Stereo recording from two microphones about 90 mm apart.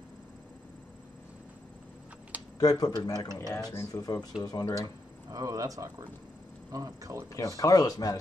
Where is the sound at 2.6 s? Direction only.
45° left (ahead or behind).